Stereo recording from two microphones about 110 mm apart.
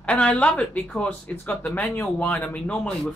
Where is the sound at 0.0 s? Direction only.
10° left (ahead or behind).